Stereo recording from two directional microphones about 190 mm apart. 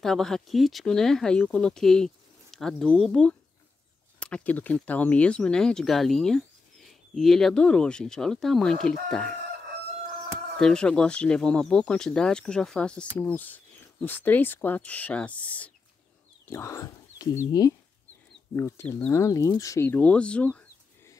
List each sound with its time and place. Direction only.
0.0 s speech: centre (ahead or behind)
10.6 s speech: 5° left (ahead or behind)